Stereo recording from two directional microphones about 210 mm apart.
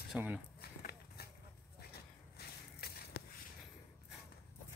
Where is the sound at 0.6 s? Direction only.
45° left (ahead or behind).